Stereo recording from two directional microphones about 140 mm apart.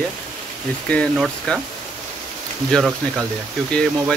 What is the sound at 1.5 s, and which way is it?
Speech, 5° left (ahead or behind).